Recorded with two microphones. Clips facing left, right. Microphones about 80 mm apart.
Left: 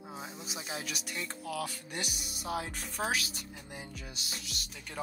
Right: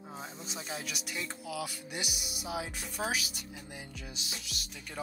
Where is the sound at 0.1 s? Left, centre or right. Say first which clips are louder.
Even; centre.